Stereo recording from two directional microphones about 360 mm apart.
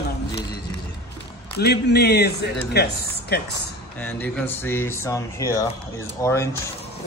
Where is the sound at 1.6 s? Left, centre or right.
Left.